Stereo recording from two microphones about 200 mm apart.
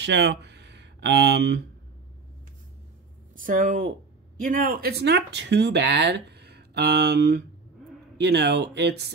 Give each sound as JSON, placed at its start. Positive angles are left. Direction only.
{"t": 0.0, "sound": "speech", "side_deg": -60}
{"t": 3.3, "sound": "speech", "side_deg": -40}